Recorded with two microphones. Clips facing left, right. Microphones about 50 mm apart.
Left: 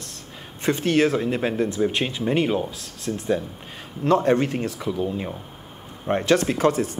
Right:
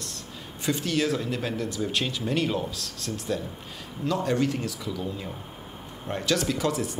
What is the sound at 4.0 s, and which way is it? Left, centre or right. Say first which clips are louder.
Speech: left 7 dB; left.